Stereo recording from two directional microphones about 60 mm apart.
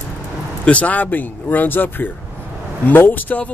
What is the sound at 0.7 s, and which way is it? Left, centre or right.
Speech, left.